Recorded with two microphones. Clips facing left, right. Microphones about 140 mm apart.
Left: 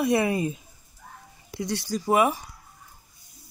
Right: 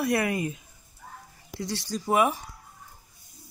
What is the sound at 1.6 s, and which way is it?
Speech, 10° left (ahead or behind).